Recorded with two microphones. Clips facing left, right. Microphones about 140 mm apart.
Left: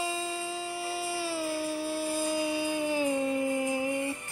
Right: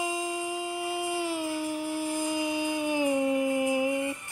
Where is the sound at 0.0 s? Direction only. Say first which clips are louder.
Right 2 dB; 15° right (ahead or behind).